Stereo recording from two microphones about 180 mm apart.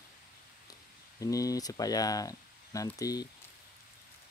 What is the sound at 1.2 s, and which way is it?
Speech, 20° left (ahead or behind).